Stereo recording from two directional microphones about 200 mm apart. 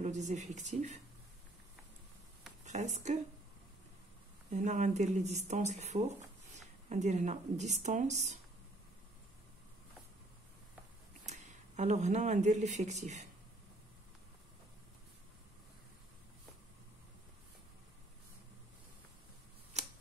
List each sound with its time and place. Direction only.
0.0 s speech: 35° right (ahead or behind)
2.6 s a woman's voice: 35° right (ahead or behind)
4.5 s speech: 35° right (ahead or behind)
11.2 s speech: 35° right (ahead or behind)
19.7 s a sound: 35° right (ahead or behind)